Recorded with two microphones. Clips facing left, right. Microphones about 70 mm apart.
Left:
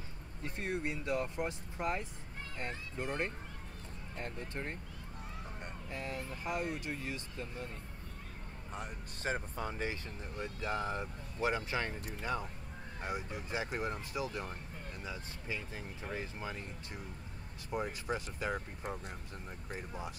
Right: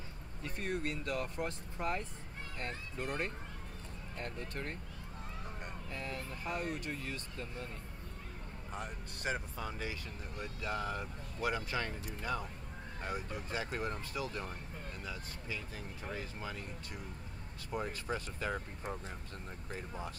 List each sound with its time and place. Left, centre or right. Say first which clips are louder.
0.4 s speech: even; left
5.9 s speech: left 2 dB; centre
9.2 s speech: left 1 dB; left; by 20.1 s centre